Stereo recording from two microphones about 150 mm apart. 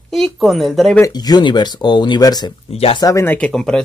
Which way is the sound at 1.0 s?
25° left (ahead or behind).